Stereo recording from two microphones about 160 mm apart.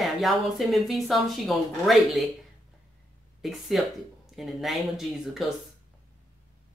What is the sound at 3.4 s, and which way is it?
Speech, centre (ahead or behind).